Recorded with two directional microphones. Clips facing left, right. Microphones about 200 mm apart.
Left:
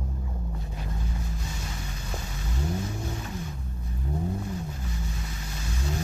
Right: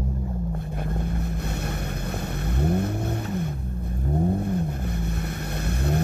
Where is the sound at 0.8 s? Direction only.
60° right (ahead or behind).